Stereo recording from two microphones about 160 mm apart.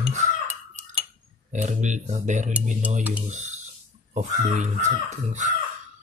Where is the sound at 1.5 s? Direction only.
50° right (ahead or behind).